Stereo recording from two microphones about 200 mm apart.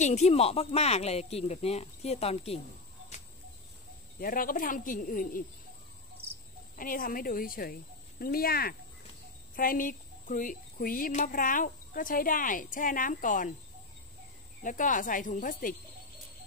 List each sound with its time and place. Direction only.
0.0 s speech: 35° left (ahead or behind)
4.2 s a woman's voice: 45° left (ahead or behind)
6.8 s a woman's voice: 45° left (ahead or behind)
14.6 s speech: 40° left (ahead or behind)